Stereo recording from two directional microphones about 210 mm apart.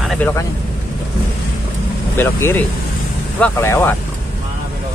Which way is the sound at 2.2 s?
10° left (ahead or behind).